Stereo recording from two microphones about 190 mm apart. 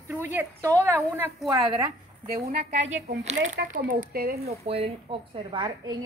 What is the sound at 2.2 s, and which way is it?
A woman's voice, 50° right (ahead or behind).